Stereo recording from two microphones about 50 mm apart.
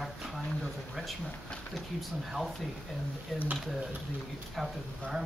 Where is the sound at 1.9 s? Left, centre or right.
Centre.